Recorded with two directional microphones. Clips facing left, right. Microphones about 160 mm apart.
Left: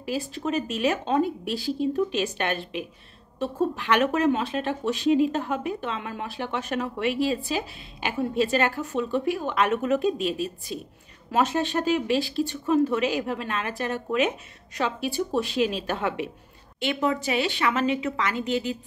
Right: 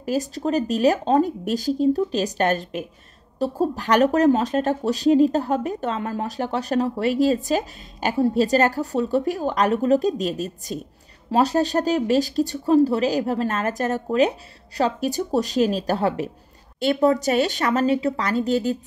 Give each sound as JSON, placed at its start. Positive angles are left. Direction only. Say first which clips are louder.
{"t": 0.0, "sound": "speech", "louder": "right 5 dB", "side_deg": -45}